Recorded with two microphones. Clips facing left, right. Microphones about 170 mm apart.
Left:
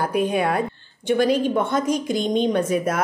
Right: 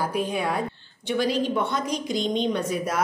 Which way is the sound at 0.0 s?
60° left (ahead or behind).